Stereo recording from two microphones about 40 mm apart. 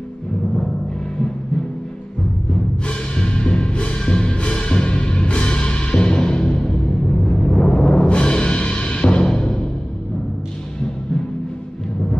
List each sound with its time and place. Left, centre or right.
2.9 s music: left